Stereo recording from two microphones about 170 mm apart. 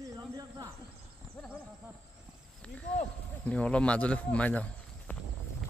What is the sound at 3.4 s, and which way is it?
Speech, 5° left (ahead or behind).